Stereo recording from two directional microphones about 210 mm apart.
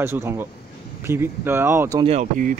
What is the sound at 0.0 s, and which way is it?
Speech, 10° right (ahead or behind).